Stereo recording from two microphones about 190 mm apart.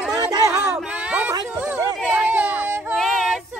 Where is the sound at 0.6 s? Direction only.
5° right (ahead or behind).